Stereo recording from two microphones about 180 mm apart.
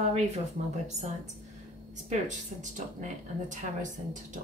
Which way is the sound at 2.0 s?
40° right (ahead or behind).